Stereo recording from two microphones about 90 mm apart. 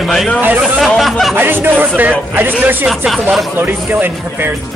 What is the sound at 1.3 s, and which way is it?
Speech, 20° right (ahead or behind).